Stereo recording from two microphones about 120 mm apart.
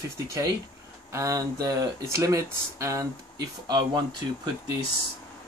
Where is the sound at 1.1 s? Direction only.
25° right (ahead or behind).